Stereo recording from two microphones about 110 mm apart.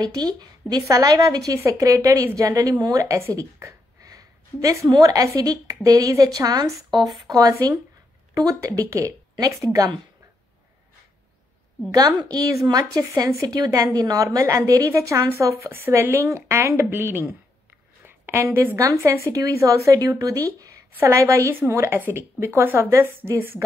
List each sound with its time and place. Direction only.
0.0 s a woman's voice: 35° right (ahead or behind)
12.2 s a woman's voice: 35° right (ahead or behind)